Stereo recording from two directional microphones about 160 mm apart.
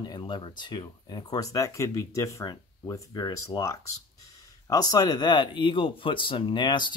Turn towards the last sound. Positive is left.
turn(degrees=30)  # may be behind; listen again after turning